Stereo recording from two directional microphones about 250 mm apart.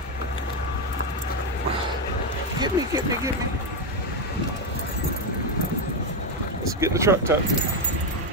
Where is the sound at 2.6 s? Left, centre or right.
Centre.